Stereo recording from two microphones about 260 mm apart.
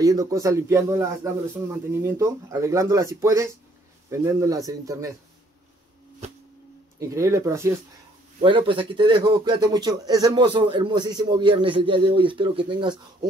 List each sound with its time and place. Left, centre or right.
0.0 s speech: centre
7.0 s a man's voice: centre